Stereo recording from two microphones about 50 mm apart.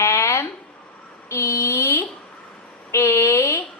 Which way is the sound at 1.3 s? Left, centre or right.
Left.